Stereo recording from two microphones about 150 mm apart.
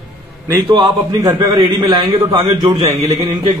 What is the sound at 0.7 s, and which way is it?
A man's voice, 25° right (ahead or behind).